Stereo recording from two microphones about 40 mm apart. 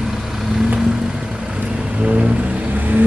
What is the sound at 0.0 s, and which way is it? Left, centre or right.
Vehicle, centre.